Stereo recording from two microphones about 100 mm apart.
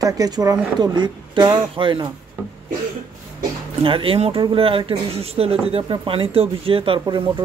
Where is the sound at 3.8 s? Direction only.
60° right (ahead or behind).